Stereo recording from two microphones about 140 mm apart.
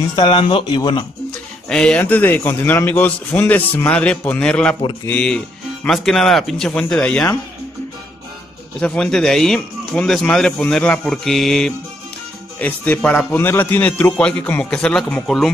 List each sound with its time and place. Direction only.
0.1 s speech: 40° left (ahead or behind)
1.7 s a man's voice: 5° left (ahead or behind)
8.7 s a man's voice: 5° left (ahead or behind)